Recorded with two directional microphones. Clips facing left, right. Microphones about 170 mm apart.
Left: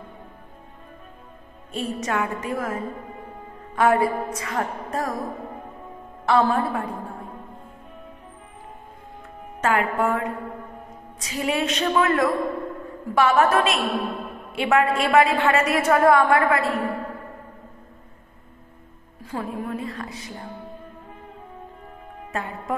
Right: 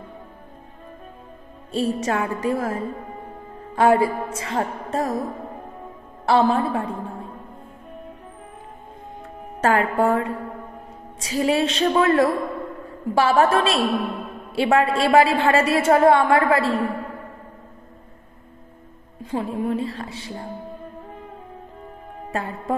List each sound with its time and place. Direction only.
1.7 s music: 30° right (ahead or behind)
3.7 s a woman's voice: 30° right (ahead or behind)
6.2 s a woman's voice: 30° right (ahead or behind)
9.6 s music: 35° right (ahead or behind)
11.1 s a woman's voice: 30° right (ahead or behind)
19.3 s a woman's voice: 25° right (ahead or behind)
22.3 s music: 35° right (ahead or behind)